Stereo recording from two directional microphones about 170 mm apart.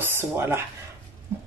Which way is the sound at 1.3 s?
15° right (ahead or behind).